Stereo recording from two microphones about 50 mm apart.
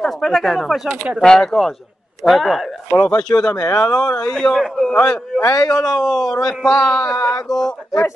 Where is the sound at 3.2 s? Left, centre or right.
Centre.